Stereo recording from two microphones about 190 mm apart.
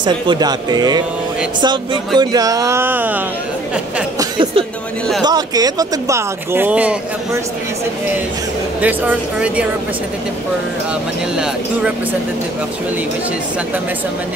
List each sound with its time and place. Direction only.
0.0 s speech: 20° right (ahead or behind)
4.2 s speech: 25° right (ahead or behind); by 7.0 s 5° right (ahead or behind)
8.8 s speech: 5° right (ahead or behind)
11.3 s speech: 5° right (ahead or behind)